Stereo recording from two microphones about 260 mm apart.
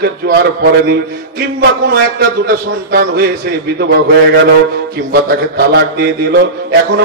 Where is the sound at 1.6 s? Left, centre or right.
Right.